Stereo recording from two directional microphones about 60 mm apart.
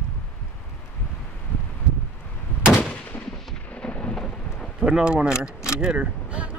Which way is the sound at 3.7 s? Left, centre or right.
Centre.